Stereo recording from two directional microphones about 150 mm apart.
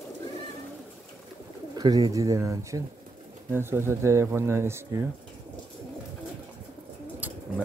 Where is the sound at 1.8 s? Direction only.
25° right (ahead or behind).